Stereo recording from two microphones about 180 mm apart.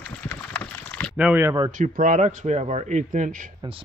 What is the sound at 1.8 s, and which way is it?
Speech, 45° right (ahead or behind).